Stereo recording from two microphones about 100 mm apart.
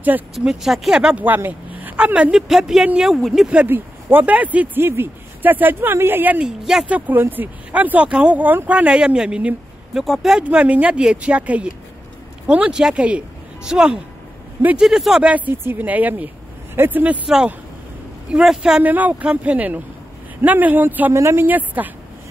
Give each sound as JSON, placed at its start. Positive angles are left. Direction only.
{"t": 0.4, "sound": "speech", "side_deg": -5}
{"t": 1.2, "sound": "speech", "side_deg": -20}
{"t": 3.5, "sound": "speech", "side_deg": -20}
{"t": 6.6, "sound": "speech", "side_deg": -5}
{"t": 7.1, "sound": "speech", "side_deg": -20}
{"t": 10.4, "sound": "speech", "side_deg": -15}